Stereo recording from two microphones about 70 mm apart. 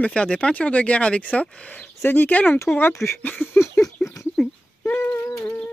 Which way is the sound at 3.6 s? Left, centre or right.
Left.